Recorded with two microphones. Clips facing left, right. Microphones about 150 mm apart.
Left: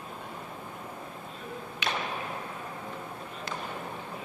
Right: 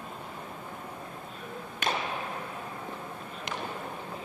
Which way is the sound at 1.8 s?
50° right (ahead or behind).